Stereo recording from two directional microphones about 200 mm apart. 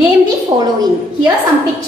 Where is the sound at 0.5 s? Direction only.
25° right (ahead or behind).